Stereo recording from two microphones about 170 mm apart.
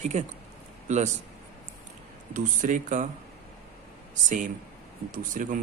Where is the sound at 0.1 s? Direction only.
45° right (ahead or behind).